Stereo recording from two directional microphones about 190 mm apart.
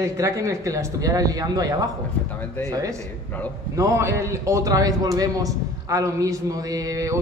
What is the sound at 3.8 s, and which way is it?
A man's voice, 15° right (ahead or behind).